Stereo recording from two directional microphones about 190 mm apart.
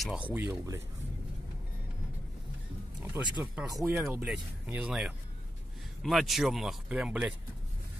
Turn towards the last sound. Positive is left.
turn(degrees=-5)  # may be behind; listen again after turning